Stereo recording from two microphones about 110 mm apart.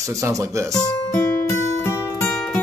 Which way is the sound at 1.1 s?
25° left (ahead or behind).